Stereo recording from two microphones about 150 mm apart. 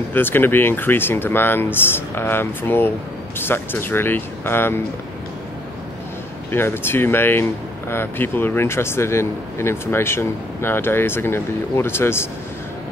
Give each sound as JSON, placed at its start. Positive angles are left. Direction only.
{"t": 0.1, "sound": "speech", "side_deg": 15}
{"t": 6.5, "sound": "speech", "side_deg": 15}